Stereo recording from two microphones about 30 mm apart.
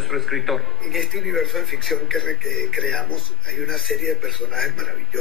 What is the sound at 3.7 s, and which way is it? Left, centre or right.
Speech, centre.